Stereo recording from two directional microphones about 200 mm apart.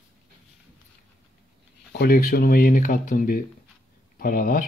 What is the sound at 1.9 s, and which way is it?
Speech, 50° left (ahead or behind).